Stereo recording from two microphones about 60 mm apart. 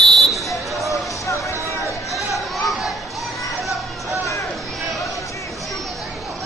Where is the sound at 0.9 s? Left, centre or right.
Left.